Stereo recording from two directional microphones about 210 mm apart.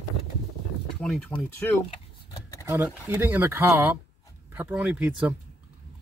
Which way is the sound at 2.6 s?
10° right (ahead or behind).